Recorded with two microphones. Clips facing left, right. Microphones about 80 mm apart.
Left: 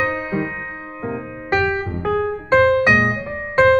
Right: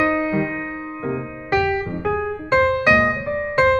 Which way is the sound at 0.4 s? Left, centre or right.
Left.